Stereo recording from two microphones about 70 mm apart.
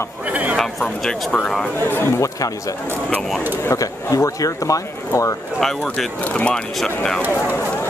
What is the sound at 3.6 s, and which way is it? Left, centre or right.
Speech, left.